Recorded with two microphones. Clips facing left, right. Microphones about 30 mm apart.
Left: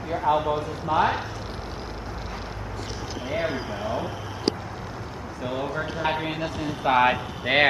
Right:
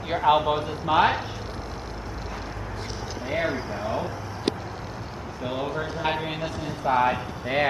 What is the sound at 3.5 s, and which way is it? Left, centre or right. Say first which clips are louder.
Speech: even; centre.